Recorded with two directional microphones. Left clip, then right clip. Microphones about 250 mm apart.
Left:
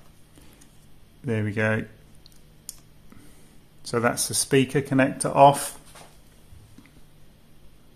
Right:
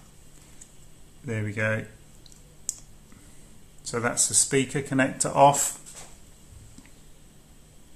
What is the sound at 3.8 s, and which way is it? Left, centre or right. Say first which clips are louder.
Speech: left 3 dB; left.